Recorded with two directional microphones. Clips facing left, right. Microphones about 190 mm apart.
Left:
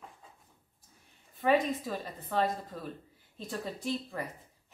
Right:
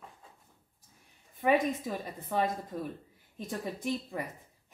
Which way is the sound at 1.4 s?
15° right (ahead or behind).